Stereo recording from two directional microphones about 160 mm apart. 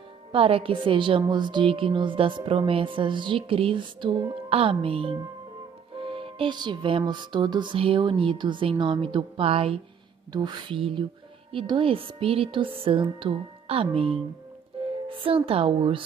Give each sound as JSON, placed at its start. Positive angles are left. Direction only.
{"t": 0.3, "sound": "music", "side_deg": -35}